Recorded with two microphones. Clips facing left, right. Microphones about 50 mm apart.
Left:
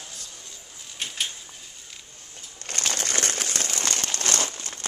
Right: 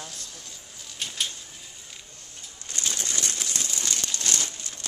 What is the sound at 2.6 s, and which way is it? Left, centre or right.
Crumpling, left.